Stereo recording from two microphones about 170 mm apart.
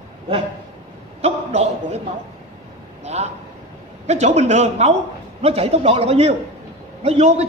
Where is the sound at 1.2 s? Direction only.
40° right (ahead or behind).